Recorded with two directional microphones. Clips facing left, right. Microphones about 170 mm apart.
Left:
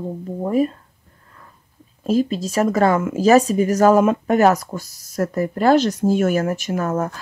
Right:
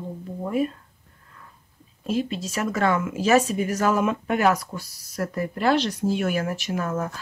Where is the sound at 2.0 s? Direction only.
40° left (ahead or behind).